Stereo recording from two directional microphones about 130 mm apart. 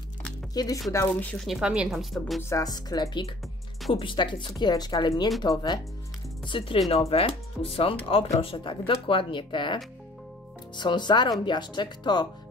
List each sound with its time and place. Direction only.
0.6 s a woman's voice: 30° left (ahead or behind)
0.9 s speech: 10° left (ahead or behind)
1.4 s speech: 5° right (ahead or behind)
2.5 s a woman's voice: 30° left (ahead or behind)
10.8 s a woman's voice: 35° left (ahead or behind)